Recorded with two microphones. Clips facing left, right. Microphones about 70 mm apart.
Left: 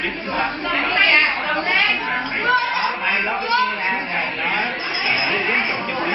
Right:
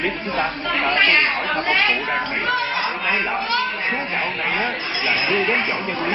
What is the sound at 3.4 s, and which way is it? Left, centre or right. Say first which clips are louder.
Children playing: left 3 dB; centre.